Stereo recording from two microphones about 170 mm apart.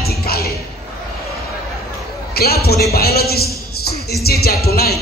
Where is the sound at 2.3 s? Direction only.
65° left (ahead or behind).